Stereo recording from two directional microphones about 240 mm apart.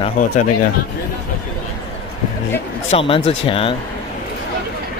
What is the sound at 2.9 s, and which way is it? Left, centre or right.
Speech, left.